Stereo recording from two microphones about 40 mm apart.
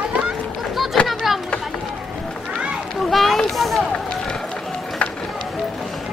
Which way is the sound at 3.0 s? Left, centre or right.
Centre.